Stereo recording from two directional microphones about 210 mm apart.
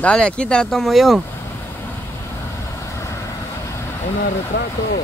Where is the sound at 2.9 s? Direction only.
15° left (ahead or behind).